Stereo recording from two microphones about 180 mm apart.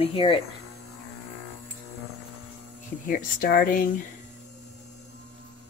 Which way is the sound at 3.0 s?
50° left (ahead or behind).